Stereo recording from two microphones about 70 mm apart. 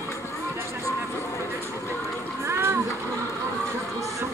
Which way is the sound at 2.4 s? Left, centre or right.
Right.